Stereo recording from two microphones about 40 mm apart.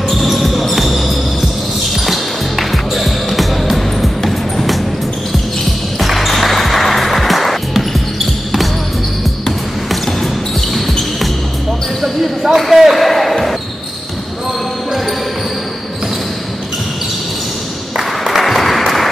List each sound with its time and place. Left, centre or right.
0.1 s basketball bounce: centre
2.0 s music: centre
5.9 s basketball bounce: centre
9.8 s basketball bounce: centre
17.9 s applause: centre